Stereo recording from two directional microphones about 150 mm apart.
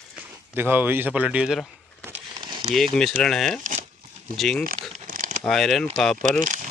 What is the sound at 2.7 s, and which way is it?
Speech, centre (ahead or behind).